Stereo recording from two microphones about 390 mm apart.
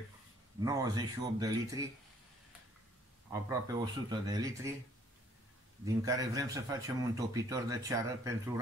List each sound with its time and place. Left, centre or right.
0.6 s a man's voice: centre
3.3 s a man's voice: centre
6.0 s a man's voice: centre